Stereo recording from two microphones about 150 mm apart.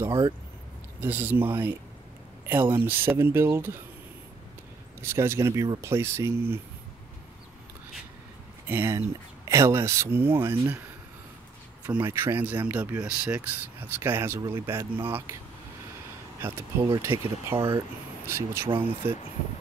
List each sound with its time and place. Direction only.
0.0 s speech: 25° right (ahead or behind)
1.0 s speech: 15° right (ahead or behind)
5.0 s speech: 15° right (ahead or behind)
8.6 s speech: 15° right (ahead or behind)
12.0 s speech: 15° right (ahead or behind)
16.3 s speech: 15° right (ahead or behind)
17.6 s speech: 30° right (ahead or behind)
18.2 s speech: 15° right (ahead or behind)